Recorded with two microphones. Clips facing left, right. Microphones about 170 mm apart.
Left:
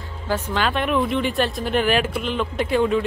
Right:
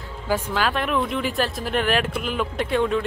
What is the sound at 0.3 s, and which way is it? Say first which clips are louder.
Speech: even; 5° right (ahead or behind).